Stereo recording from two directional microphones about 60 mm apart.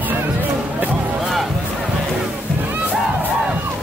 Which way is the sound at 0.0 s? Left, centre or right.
Right.